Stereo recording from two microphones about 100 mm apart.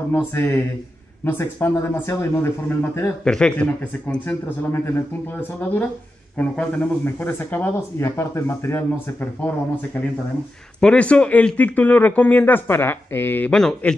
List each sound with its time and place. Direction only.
0.1 s speech: 25° left (ahead or behind)
3.3 s speech: 10° left (ahead or behind)
5.4 s speech: 15° left (ahead or behind)
13.5 s speech: 5° left (ahead or behind)